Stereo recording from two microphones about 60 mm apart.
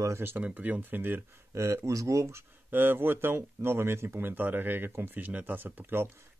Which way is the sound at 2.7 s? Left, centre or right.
Right.